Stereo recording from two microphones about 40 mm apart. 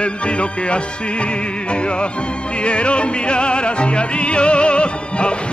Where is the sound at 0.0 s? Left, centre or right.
Left.